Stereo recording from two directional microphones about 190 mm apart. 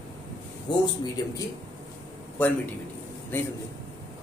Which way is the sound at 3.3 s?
10° left (ahead or behind).